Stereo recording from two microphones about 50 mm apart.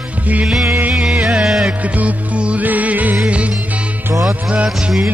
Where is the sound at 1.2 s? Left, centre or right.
Centre.